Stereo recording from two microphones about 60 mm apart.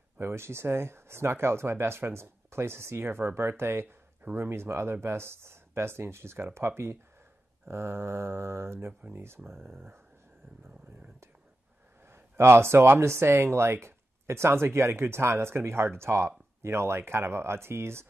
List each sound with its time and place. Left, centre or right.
0.2 s speech: right
9.5 s speech: centre
12.1 s speech: right